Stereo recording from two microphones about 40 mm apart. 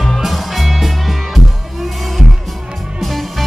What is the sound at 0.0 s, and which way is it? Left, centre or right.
Music, centre.